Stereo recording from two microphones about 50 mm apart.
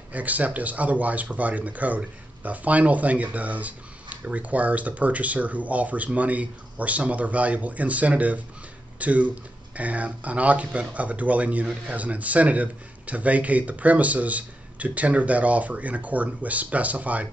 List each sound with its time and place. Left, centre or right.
0.1 s speech: right